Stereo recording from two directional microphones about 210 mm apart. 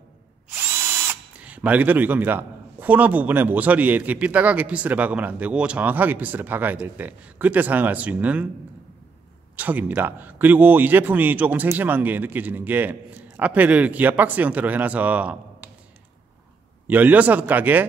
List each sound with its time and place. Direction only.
0.6 s speech: 10° right (ahead or behind)
9.6 s speech: 5° right (ahead or behind)
16.8 s speech: 10° right (ahead or behind)